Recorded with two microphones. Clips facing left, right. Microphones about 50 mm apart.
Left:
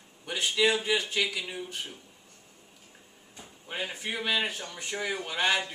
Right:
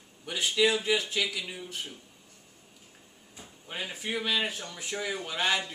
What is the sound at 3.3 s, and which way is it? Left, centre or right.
Speech, centre.